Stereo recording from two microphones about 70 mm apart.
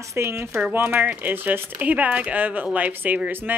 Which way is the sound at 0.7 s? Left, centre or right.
Right.